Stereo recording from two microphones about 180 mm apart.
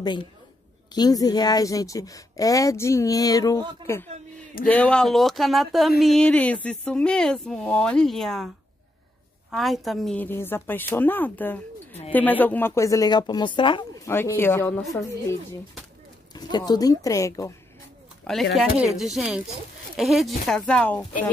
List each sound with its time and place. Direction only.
0.0 s a woman's voice: 25° left (ahead or behind); by 8.5 s centre (ahead or behind)
9.5 s a woman's voice: centre (ahead or behind); by 13.8 s 25° left (ahead or behind)
14.0 s a woman's voice: 15° left (ahead or behind)
14.8 s speech: centre (ahead or behind)
16.3 s a woman's voice: 20° left (ahead or behind)
18.2 s speech: centre (ahead or behind)